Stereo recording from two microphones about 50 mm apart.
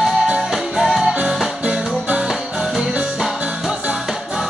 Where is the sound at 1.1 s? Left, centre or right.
Centre.